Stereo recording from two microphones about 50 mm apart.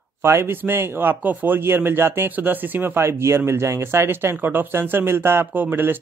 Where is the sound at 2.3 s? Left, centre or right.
Right.